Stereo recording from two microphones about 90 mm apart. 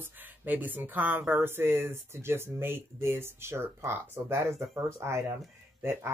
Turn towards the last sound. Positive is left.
turn(degrees=-30)  # may be behind; listen again after turning